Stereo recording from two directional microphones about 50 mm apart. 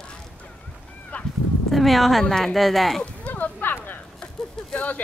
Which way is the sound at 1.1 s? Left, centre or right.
Left.